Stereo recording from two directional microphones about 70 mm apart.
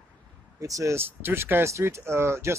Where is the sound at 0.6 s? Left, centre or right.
Right.